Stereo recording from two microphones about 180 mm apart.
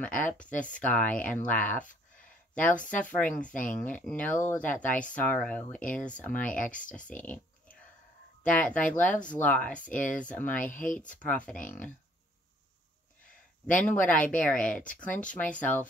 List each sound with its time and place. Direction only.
0.0 s speech: 10° left (ahead or behind)
10.7 s speech: 45° left (ahead or behind)
11.0 s speech: 5° left (ahead or behind)
13.7 s speech: 10° left (ahead or behind)